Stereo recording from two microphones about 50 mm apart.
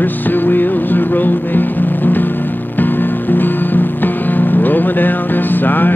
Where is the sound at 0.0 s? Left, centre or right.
Left.